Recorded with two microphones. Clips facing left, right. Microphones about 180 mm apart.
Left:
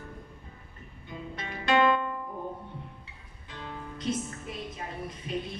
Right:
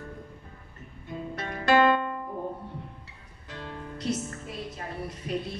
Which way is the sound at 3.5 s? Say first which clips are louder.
Right 2 dB; 65° right (ahead or behind).